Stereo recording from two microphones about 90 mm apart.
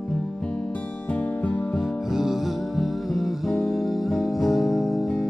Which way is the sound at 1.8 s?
5° right (ahead or behind).